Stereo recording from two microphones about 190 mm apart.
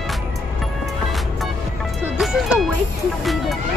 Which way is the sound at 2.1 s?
Centre (ahead or behind).